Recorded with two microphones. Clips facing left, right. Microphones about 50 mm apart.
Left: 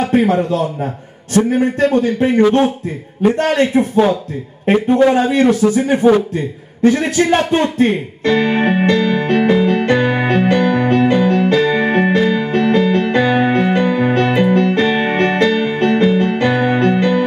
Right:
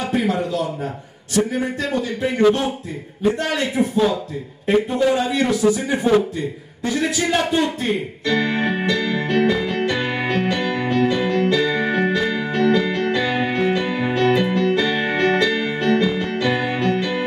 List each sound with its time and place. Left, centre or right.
0.1 s speech: left
6.8 s music: left